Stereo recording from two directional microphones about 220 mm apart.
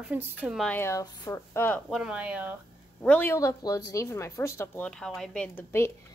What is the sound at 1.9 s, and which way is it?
Speech, 5° right (ahead or behind).